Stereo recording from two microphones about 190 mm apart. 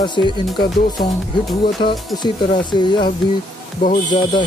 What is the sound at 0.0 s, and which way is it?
Speech, 25° left (ahead or behind).